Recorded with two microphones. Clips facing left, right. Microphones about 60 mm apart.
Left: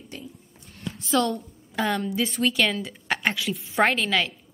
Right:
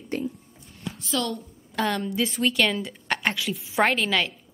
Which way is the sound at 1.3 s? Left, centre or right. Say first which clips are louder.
Even; centre.